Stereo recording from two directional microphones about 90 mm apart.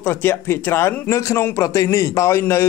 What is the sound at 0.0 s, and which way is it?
A man's voice, 25° left (ahead or behind).